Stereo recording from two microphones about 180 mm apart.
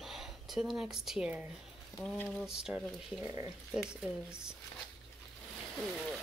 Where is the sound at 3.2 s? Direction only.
20° right (ahead or behind).